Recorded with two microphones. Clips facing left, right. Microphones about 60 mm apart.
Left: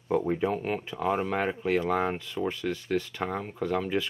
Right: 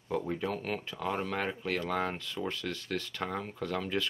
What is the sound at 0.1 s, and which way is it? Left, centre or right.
Speech, centre.